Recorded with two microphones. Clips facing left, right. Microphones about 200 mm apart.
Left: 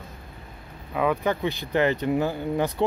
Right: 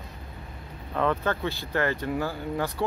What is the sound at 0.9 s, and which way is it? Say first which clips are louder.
Speech: left 2 dB; 10° left (ahead or behind).